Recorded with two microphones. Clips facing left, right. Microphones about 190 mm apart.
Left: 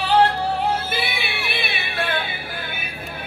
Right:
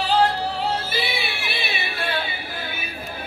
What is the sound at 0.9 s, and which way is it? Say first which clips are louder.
Music: even; 55° left (ahead or behind).